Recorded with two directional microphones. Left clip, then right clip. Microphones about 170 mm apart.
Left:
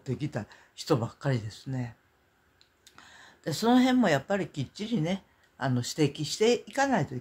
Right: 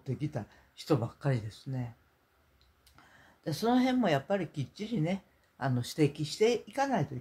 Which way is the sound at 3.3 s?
20° left (ahead or behind).